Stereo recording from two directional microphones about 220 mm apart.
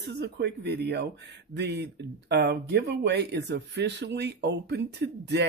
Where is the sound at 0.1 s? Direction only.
50° right (ahead or behind).